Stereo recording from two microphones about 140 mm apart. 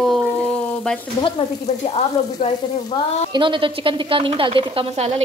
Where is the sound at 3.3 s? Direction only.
35° right (ahead or behind).